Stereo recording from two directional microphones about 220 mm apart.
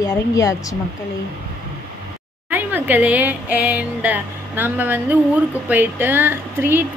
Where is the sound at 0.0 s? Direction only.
15° left (ahead or behind).